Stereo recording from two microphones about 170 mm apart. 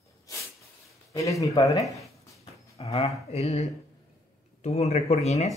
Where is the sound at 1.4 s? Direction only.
20° left (ahead or behind).